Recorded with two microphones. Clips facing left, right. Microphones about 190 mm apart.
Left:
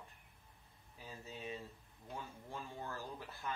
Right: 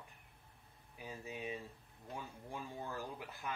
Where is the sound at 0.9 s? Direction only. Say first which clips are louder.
Right 4 dB; 15° right (ahead or behind).